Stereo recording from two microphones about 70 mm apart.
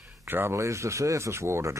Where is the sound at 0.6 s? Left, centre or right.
Right.